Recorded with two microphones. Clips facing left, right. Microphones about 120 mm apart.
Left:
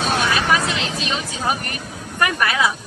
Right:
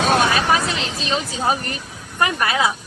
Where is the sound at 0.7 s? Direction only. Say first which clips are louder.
Even; 35° right (ahead or behind).